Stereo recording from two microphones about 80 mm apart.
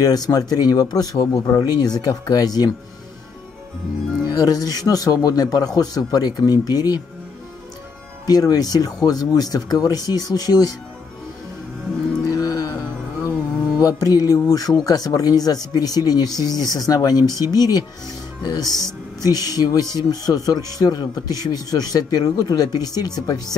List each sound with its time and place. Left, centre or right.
0.0 s speech: left
4.4 s speech: left
8.3 s speech: left
12.3 s music: left
12.7 s music: right
13.7 s speech: left